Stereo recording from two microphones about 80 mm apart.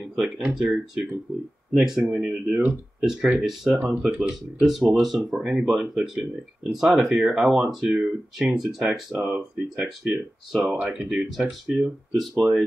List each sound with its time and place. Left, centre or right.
0.4 s speech: centre
2.0 s speech: right
8.5 s speech: centre
11.4 s speech: centre
12.2 s speech: centre